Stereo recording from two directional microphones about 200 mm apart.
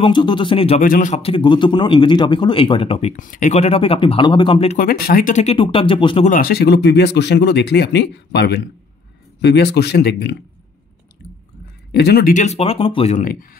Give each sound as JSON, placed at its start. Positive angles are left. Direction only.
{"t": 0.0, "sound": "a man's voice", "side_deg": 25}
{"t": 0.7, "sound": "a man's voice", "side_deg": 40}
{"t": 4.7, "sound": "speech", "side_deg": 50}
{"t": 6.2, "sound": "speech", "side_deg": 45}
{"t": 11.9, "sound": "speech", "side_deg": 55}